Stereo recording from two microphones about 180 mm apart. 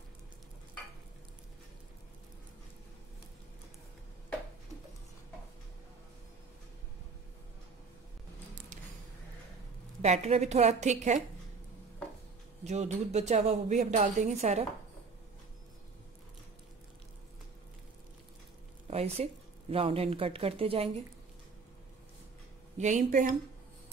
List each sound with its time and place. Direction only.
10.0 s a woman's voice: 40° right (ahead or behind)
12.6 s a woman's voice: 40° right (ahead or behind)
18.9 s a sound: 35° right (ahead or behind)
19.7 s a woman's voice: 30° right (ahead or behind)
22.8 s speech: 40° right (ahead or behind)